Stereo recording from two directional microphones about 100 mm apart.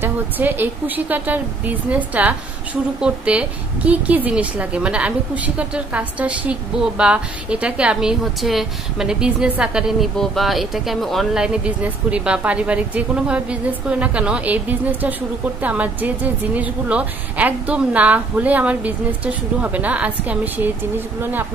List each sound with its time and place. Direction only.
0.0 s speech: 20° right (ahead or behind)